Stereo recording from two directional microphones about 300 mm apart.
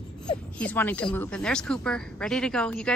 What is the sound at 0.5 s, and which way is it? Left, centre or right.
A woman's voice, centre.